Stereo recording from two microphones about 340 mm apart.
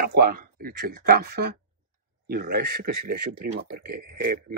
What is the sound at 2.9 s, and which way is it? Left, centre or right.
Speech, right.